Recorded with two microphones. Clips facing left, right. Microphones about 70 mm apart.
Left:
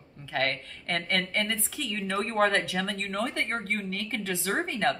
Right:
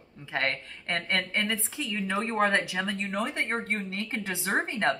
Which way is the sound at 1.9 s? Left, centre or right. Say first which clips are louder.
Even; centre.